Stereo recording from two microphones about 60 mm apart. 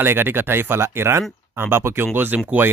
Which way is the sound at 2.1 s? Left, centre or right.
Right.